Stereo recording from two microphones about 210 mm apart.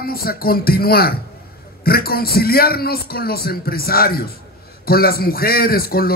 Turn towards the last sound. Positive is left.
turn(degrees=45)  # may be behind; listen again after turning